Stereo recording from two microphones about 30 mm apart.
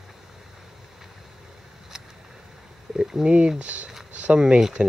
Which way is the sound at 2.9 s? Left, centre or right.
Centre.